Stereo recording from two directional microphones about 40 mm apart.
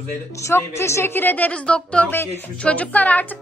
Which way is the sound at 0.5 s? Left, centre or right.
Left.